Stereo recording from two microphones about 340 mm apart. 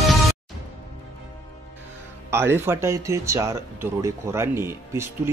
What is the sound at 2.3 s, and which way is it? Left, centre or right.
Speech, centre.